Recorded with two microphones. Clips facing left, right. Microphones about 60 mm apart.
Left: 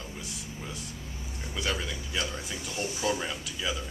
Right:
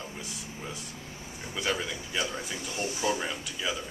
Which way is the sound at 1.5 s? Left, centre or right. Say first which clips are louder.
Right 1 dB; centre.